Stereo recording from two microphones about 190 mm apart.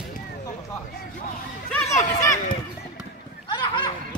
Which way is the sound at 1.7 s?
10° left (ahead or behind).